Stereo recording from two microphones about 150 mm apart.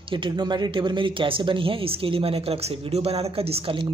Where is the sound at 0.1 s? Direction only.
30° right (ahead or behind).